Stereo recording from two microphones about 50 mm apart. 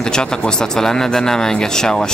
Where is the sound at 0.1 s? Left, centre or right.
Centre.